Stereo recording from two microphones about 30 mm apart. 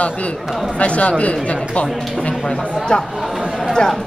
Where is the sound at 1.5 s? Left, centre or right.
Left.